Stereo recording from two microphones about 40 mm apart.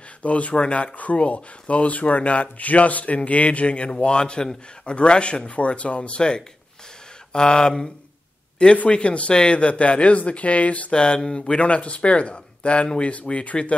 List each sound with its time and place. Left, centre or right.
0.2 s speech: left
10.9 s speech: left
11.4 s speech: left